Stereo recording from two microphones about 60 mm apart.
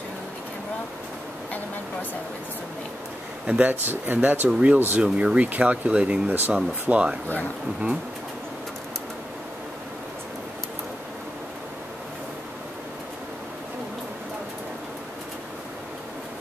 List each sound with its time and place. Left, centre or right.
3.4 s speech: centre
3.8 s speech: right
4.5 s speech: centre
4.7 s speech: right
5.0 s speech: centre